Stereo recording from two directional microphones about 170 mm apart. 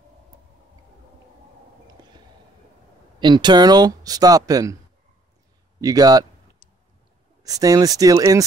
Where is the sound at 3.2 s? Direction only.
25° right (ahead or behind).